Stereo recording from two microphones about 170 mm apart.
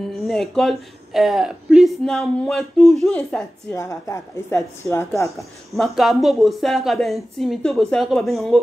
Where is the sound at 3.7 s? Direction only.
20° left (ahead or behind).